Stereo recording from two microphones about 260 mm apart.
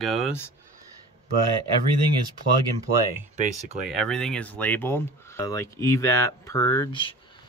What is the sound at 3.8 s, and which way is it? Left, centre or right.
Speech, centre.